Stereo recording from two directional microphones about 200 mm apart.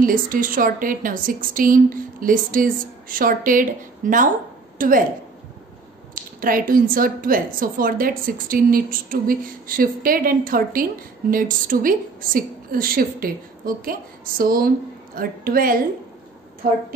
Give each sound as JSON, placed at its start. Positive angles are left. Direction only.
{"t": 0.0, "sound": "a woman's voice", "side_deg": -45}
{"t": 6.1, "sound": "a woman's voice", "side_deg": -45}